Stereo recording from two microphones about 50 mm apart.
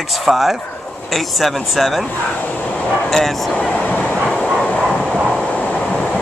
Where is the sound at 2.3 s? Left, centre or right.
Left.